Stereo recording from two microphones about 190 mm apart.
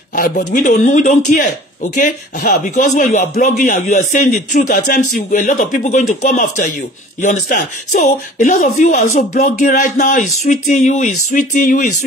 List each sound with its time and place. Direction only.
0.1 s speech: 45° left (ahead or behind)